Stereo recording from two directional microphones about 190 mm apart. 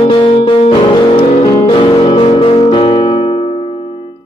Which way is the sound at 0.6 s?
30° left (ahead or behind).